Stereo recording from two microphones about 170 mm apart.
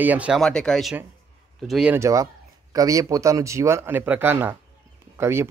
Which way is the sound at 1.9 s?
20° right (ahead or behind).